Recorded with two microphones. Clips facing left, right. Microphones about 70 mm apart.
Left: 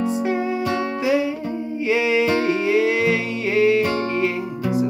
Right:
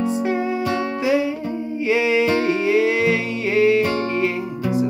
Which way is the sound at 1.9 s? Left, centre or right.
Centre.